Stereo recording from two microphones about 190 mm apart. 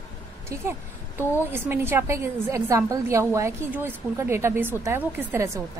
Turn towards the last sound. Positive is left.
turn(degrees=-15)  # may be behind; listen again after turning